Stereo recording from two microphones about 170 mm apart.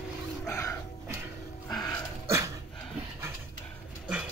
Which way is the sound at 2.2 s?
15° right (ahead or behind).